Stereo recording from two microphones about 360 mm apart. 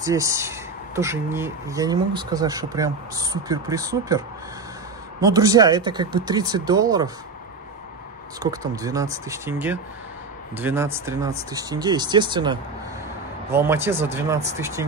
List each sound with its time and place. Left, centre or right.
0.0 s speech: centre
5.2 s speech: centre
8.4 s speech: centre